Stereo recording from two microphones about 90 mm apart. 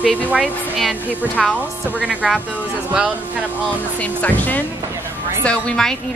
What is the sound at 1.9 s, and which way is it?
Speech, 10° right (ahead or behind).